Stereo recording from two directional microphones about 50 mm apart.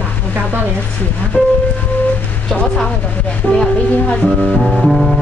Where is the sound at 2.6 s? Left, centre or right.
Centre.